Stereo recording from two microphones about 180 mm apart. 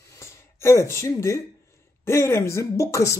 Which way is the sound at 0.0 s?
15° left (ahead or behind).